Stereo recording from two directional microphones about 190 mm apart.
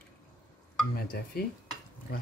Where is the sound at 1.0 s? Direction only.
55° left (ahead or behind).